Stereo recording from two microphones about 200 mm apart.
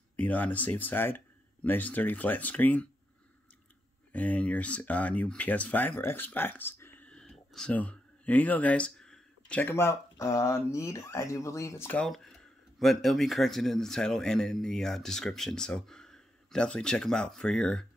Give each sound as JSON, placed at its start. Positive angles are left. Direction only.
{"t": 0.1, "sound": "speech", "side_deg": 10}
{"t": 4.1, "sound": "speech", "side_deg": 5}